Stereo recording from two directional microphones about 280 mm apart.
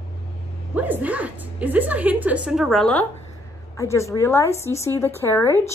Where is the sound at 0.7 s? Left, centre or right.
Centre.